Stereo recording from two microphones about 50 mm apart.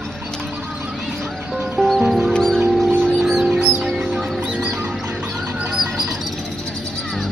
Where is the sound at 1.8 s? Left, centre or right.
Centre.